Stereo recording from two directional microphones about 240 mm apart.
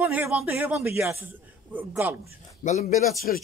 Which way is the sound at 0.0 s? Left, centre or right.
Centre.